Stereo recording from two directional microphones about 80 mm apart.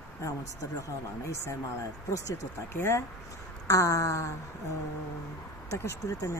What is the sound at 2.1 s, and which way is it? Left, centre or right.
Speech, left.